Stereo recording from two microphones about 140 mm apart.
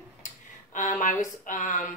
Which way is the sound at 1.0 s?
70° left (ahead or behind).